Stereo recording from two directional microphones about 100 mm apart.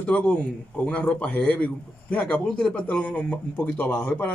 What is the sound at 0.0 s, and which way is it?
A man's voice, 15° left (ahead or behind).